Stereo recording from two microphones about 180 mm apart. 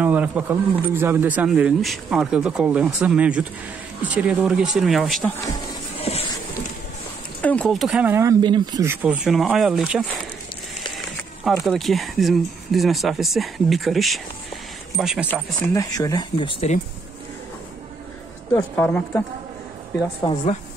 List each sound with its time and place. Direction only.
0.0 s speech: 10° right (ahead or behind)
5.9 s music: 35° left (ahead or behind)
7.4 s speech: 5° left (ahead or behind); by 8.8 s 25° right (ahead or behind)
8.8 s speech: 10° right (ahead or behind)
11.6 s speech: centre (ahead or behind)
15.6 s speech: 20° left (ahead or behind); by 16.8 s 35° left (ahead or behind)
18.5 s speech: 15° left (ahead or behind)